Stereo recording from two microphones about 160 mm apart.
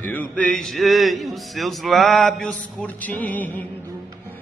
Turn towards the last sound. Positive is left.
turn(degrees=10)  # may be behind; listen again after turning